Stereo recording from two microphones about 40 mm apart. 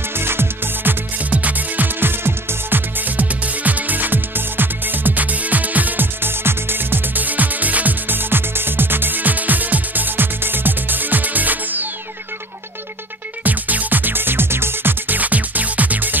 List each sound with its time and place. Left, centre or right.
0.2 s music: right
1.3 s music: right
2.0 s music: right
3.2 s music: right
6.2 s music: right
7.2 s music: right
8.2 s music: right
13.4 s music: right
15.1 s music: right